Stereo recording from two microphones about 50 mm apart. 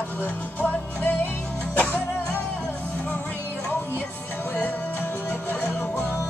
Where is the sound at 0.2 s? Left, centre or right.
Left.